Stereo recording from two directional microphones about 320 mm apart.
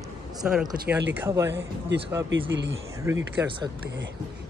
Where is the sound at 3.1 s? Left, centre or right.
Centre.